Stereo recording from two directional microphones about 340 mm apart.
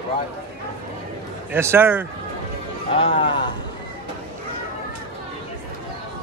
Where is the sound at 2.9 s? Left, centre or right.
Centre.